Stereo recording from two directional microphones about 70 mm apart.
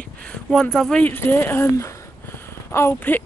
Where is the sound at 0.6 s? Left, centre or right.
Centre.